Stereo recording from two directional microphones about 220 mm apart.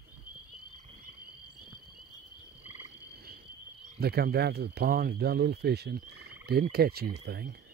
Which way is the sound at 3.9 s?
45° right (ahead or behind).